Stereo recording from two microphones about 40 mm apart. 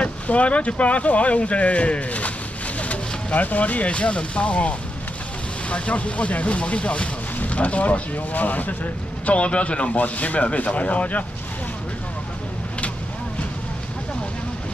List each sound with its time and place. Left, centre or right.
0.0 s speech: left
9.2 s a man's voice: left